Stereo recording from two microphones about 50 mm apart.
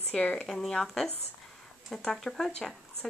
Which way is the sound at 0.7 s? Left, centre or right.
Centre.